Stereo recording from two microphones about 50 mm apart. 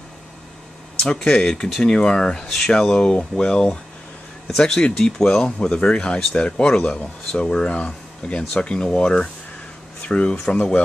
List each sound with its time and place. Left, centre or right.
1.1 s speech: left
2.4 s speech: centre; by 10.8 s left